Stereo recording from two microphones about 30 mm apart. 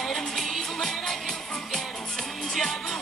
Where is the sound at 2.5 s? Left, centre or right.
Centre.